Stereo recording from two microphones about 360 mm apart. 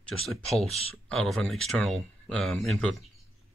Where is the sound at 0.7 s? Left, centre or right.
Centre.